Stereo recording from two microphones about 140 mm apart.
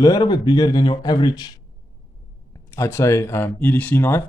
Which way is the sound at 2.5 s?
20° left (ahead or behind).